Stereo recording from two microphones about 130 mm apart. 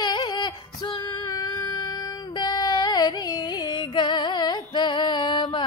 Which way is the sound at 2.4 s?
30° left (ahead or behind).